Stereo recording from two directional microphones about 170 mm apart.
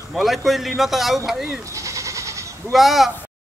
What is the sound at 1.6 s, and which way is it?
Goat, 20° right (ahead or behind).